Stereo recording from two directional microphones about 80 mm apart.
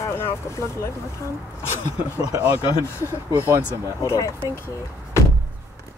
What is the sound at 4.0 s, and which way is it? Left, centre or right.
Speech, left.